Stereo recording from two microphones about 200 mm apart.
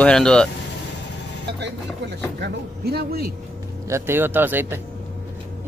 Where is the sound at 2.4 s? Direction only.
50° right (ahead or behind).